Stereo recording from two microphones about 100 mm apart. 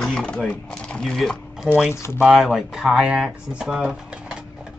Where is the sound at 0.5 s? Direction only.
10° left (ahead or behind).